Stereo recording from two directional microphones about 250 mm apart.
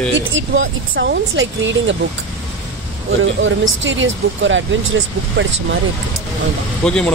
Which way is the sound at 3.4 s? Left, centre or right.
Right.